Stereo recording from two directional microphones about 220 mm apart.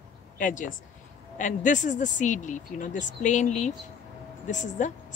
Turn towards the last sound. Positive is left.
turn(degrees=35)  # may be behind; listen again after turning